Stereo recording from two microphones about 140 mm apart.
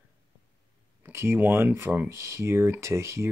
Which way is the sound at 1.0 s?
15° right (ahead or behind).